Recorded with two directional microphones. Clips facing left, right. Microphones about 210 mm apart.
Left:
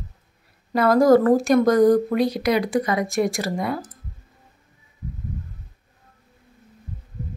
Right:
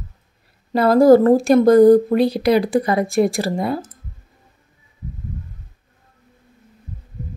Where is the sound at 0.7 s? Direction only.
30° right (ahead or behind).